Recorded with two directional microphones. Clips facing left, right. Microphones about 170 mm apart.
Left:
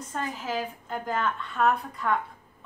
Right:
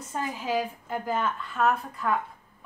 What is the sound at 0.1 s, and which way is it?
Speech, 10° right (ahead or behind).